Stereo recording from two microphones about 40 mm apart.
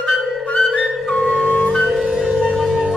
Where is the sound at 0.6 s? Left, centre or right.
Centre.